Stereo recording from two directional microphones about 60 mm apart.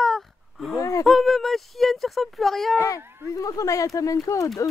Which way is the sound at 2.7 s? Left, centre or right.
Left.